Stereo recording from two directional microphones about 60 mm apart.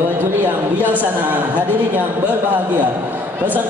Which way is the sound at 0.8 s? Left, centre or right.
Right.